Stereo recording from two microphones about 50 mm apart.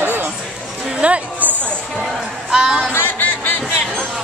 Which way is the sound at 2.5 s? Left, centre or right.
Centre.